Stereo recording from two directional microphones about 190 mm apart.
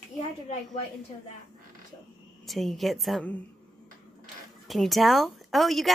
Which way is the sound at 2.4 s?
Centre (ahead or behind).